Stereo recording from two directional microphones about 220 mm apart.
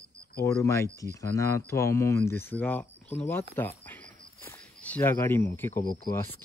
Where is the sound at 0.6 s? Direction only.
15° left (ahead or behind).